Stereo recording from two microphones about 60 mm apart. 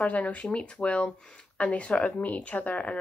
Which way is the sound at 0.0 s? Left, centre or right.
Left.